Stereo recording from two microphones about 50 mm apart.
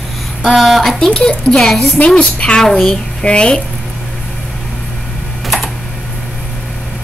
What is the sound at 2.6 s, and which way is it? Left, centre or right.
Speech, centre.